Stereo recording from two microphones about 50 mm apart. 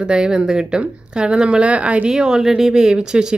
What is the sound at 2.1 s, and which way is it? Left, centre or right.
Speech, centre.